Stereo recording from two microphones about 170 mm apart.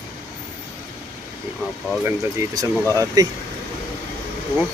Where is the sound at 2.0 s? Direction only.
20° right (ahead or behind).